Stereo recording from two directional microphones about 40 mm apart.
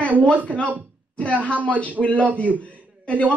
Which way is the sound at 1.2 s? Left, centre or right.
Left.